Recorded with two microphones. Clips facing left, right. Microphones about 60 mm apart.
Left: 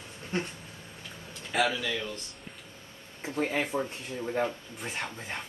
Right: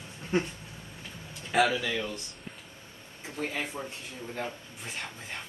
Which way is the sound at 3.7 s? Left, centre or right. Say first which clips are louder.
Left 7 dB; left.